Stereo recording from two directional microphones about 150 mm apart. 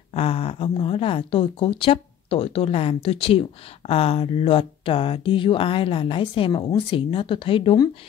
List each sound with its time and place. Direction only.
0.1 s speech: 40° left (ahead or behind)